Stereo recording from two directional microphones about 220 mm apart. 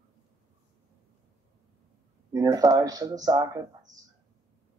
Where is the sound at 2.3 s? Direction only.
15° right (ahead or behind).